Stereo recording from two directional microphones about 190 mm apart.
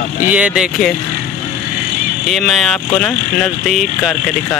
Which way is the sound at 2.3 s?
Centre (ahead or behind).